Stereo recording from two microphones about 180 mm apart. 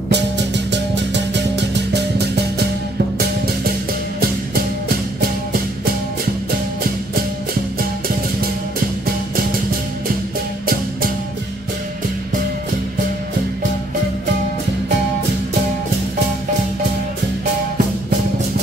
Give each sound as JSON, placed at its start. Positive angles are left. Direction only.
{"t": 0.1, "sound": "music", "side_deg": -75}
{"t": 4.8, "sound": "music", "side_deg": -55}